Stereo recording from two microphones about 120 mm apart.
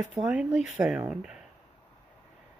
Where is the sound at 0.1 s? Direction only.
10° right (ahead or behind).